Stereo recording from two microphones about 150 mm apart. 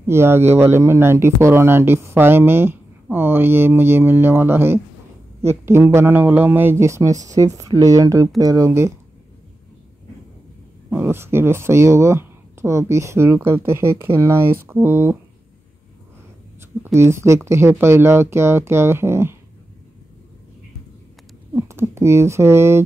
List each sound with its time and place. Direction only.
0.0 s speech: 15° right (ahead or behind)
10.9 s speech: 15° right (ahead or behind)
16.8 s speech: 15° right (ahead or behind)
21.5 s speech: 15° right (ahead or behind)